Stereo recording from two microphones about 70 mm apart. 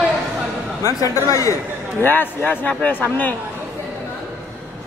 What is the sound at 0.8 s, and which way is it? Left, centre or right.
Speech, left.